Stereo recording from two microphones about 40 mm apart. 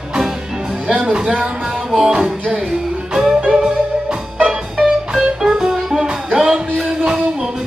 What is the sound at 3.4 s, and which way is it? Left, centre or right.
Music, centre.